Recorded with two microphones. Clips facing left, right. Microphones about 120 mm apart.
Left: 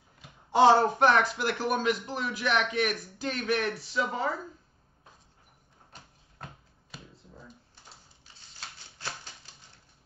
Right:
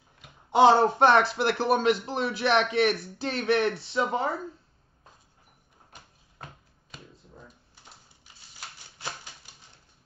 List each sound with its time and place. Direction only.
0.5 s speech: 20° right (ahead or behind)
8.5 s shuffling cards: 15° right (ahead or behind)